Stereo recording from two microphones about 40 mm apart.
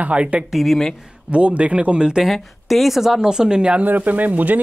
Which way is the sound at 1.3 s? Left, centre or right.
Right.